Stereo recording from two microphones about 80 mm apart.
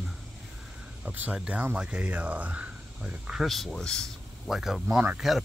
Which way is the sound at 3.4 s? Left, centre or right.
Centre.